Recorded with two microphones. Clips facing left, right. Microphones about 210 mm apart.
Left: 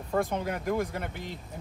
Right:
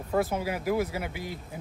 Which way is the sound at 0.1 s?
5° right (ahead or behind).